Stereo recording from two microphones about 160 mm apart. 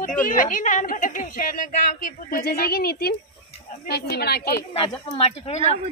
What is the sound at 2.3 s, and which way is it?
Speech, 70° left (ahead or behind).